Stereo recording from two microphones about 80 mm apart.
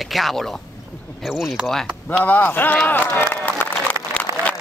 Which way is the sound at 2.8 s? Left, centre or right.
Left.